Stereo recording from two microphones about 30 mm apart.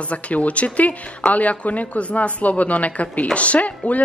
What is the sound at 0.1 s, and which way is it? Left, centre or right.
A woman's voice, left.